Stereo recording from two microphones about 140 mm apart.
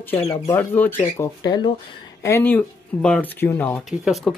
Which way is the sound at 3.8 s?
Centre (ahead or behind).